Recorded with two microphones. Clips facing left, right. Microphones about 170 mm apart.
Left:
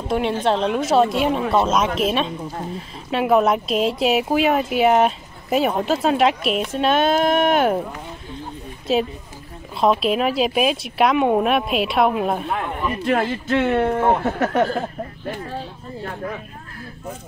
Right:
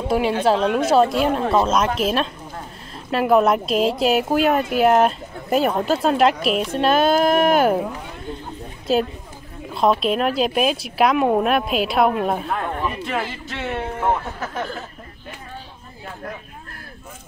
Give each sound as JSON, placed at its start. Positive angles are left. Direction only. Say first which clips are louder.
{"t": 0.4, "sound": "speech", "louder": "right 2 dB", "side_deg": -5}
{"t": 8.9, "sound": "speech", "louder": "even", "side_deg": 0}
{"t": 13.5, "sound": "speech", "louder": "left 9 dB", "side_deg": 60}